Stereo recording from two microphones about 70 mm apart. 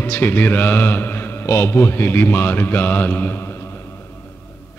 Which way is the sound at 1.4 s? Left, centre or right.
Left.